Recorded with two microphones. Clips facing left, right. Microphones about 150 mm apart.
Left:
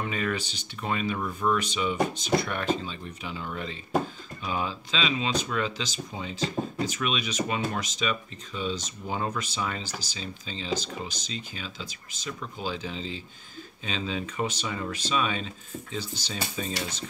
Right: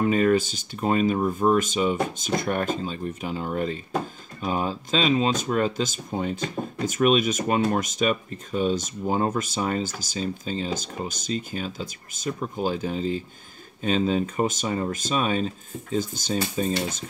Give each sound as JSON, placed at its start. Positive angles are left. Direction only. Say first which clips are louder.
{"t": 0.0, "sound": "speech", "louder": "right 10 dB", "side_deg": -40}